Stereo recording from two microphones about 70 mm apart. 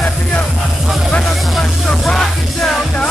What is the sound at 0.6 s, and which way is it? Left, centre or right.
Music, centre.